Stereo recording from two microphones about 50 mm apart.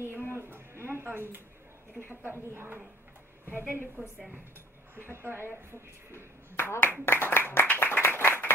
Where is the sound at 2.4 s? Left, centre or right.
Right.